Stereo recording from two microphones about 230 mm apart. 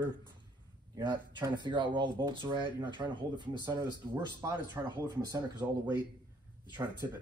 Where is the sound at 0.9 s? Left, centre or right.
Centre.